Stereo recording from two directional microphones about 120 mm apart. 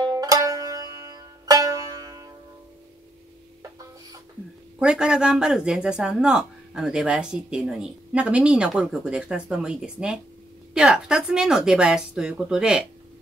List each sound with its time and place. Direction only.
0.1 s music: 30° right (ahead or behind)
4.7 s speech: 5° right (ahead or behind)